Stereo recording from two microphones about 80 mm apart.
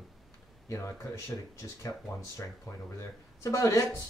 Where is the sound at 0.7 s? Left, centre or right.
Left.